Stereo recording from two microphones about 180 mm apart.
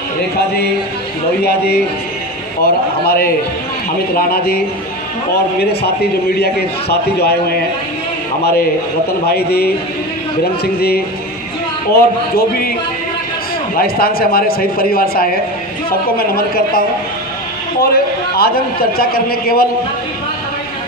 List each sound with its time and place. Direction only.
2.6 s a man's voice: 60° left (ahead or behind)
9.3 s a man's voice: 60° left (ahead or behind)
13.7 s a man's voice: 55° left (ahead or behind)